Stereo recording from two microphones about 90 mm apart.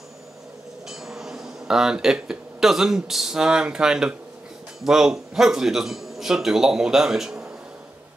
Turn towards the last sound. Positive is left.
turn(degrees=-5)  # may be behind; listen again after turning